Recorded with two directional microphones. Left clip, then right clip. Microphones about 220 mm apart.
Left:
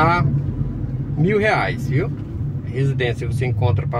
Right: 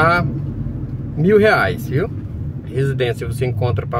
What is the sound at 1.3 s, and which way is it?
Speech, 25° right (ahead or behind).